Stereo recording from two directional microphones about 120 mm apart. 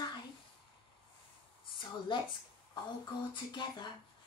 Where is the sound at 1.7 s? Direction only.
40° left (ahead or behind).